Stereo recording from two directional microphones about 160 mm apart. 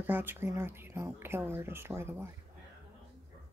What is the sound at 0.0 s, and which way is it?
Speech, 10° right (ahead or behind).